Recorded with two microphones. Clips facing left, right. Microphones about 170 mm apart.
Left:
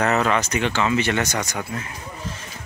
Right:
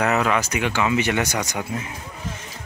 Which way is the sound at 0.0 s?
5° right (ahead or behind).